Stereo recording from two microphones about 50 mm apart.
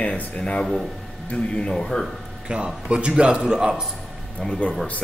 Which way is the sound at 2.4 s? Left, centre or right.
Centre.